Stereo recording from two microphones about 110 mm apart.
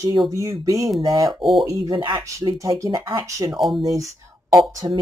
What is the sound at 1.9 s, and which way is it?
Speech, 45° right (ahead or behind).